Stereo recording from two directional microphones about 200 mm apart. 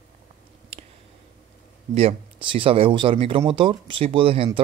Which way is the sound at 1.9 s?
30° right (ahead or behind).